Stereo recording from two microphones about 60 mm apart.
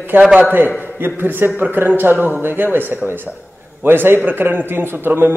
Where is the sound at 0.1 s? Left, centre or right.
Right.